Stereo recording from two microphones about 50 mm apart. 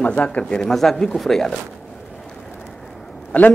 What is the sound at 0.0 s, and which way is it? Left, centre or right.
Speech, left.